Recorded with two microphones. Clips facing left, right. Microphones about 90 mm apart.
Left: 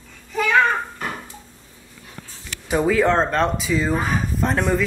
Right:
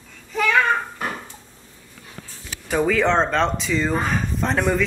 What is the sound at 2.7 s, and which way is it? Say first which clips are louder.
Speech: left 1 dB; 5° left (ahead or behind).